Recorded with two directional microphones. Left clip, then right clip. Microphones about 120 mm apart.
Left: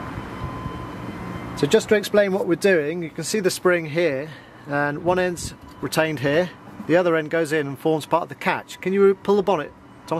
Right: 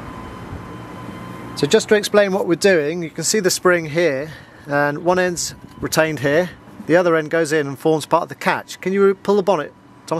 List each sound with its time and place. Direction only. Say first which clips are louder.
1.6 s speech: right 3 dB; 35° right (ahead or behind)